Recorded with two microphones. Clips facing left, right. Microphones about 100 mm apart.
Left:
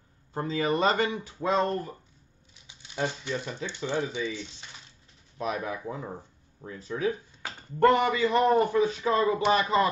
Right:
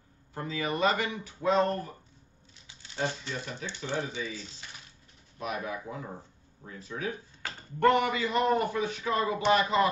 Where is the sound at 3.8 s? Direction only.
20° left (ahead or behind).